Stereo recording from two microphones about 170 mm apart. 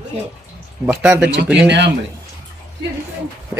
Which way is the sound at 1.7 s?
90° right.